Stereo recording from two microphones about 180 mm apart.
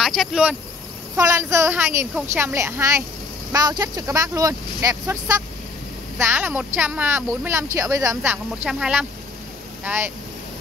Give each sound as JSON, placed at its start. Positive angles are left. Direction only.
{"t": 0.0, "sound": "speech", "side_deg": 0}
{"t": 1.1, "sound": "a woman's voice", "side_deg": -15}
{"t": 6.1, "sound": "a woman's voice", "side_deg": -10}